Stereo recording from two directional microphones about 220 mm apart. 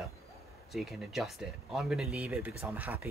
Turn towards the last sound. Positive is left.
turn(degrees=-10)  # may be behind; listen again after turning